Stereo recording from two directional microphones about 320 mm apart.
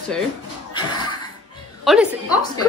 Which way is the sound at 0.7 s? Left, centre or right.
Centre.